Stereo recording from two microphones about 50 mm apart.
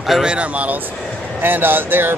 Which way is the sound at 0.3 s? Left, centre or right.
Right.